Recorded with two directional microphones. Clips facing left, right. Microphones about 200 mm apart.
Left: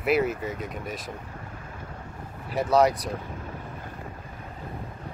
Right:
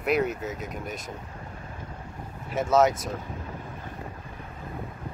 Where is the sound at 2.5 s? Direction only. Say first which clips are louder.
Even; centre (ahead or behind).